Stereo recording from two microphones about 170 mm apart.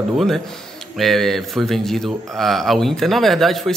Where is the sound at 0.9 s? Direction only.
Centre (ahead or behind).